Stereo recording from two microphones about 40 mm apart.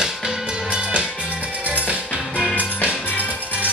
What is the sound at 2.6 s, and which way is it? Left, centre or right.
Music, right.